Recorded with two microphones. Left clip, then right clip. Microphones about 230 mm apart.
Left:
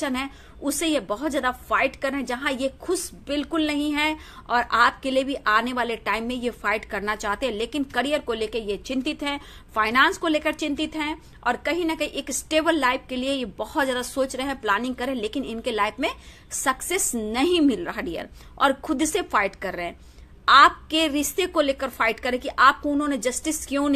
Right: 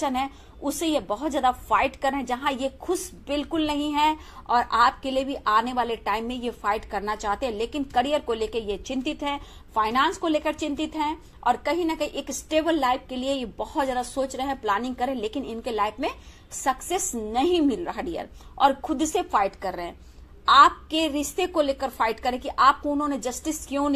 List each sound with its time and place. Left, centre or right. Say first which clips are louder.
0.0 s a woman's voice: right 2 dB; left